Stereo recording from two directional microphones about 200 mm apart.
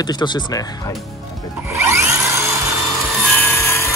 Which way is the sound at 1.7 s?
15° right (ahead or behind).